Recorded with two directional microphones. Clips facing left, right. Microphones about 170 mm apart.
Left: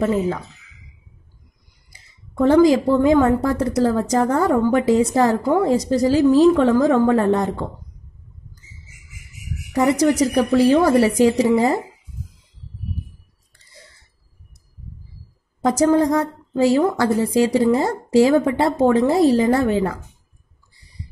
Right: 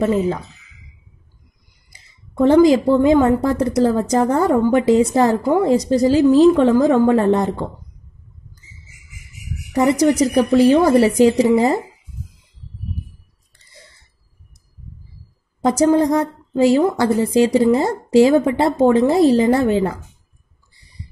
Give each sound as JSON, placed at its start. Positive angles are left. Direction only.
{"t": 2.4, "sound": "a woman's voice", "side_deg": -20}
{"t": 9.7, "sound": "a woman's voice", "side_deg": -20}
{"t": 15.6, "sound": "a woman's voice", "side_deg": -20}